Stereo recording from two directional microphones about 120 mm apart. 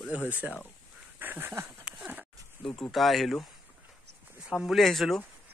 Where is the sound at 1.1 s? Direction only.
15° right (ahead or behind).